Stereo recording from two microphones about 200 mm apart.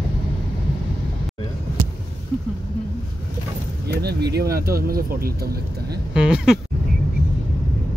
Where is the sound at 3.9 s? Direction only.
55° right (ahead or behind).